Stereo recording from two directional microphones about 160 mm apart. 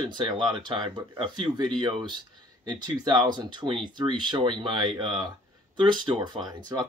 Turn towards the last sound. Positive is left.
turn(degrees=-25)  # may be behind; listen again after turning